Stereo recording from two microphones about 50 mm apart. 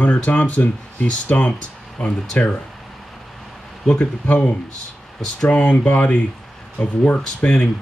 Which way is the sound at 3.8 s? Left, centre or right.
Left.